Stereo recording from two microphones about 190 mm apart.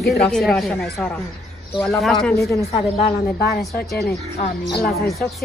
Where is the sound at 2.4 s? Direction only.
15° left (ahead or behind).